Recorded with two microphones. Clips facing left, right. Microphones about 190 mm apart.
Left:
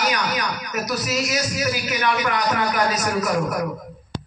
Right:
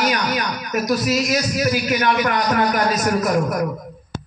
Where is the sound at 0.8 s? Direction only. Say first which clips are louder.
Right 6 dB; 40° right (ahead or behind).